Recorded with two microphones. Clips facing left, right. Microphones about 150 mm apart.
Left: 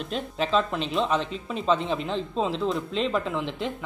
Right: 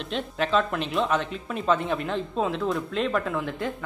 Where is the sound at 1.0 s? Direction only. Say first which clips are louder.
Even; 30° left (ahead or behind).